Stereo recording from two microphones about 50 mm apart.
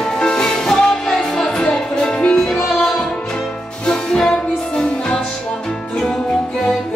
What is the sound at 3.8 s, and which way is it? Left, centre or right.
Music, centre.